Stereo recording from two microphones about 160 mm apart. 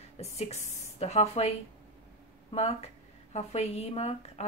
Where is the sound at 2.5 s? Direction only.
40° left (ahead or behind).